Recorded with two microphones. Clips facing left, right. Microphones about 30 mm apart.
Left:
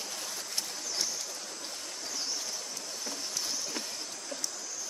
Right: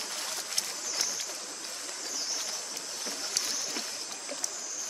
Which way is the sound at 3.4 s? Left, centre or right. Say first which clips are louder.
Right 4 dB; right.